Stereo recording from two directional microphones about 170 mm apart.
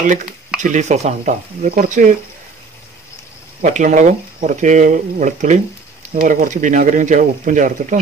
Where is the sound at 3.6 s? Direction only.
50° right (ahead or behind).